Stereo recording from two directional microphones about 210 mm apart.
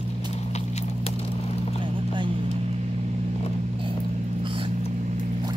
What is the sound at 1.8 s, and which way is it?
Vehicle, 20° right (ahead or behind).